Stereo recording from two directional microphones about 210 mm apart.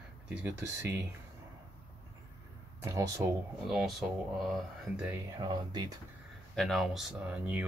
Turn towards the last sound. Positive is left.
turn(degrees=-5)  # may be behind; listen again after turning